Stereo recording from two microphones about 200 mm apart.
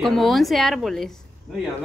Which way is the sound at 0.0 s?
Centre (ahead or behind).